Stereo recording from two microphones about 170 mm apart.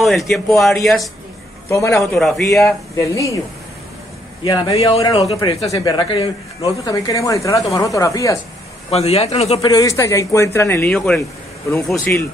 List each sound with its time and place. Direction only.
0.0 s a man's voice: centre (ahead or behind)
1.7 s speech: 15° left (ahead or behind)
2.1 s a man's voice: centre (ahead or behind)
2.5 s speech: 20° left (ahead or behind)
4.5 s speech: 20° left (ahead or behind)
6.8 s speech: 20° left (ahead or behind)
8.9 s a man's voice: 35° left (ahead or behind)
9.6 s speech: 20° left (ahead or behind)
10.9 s a man's voice: 5° left (ahead or behind)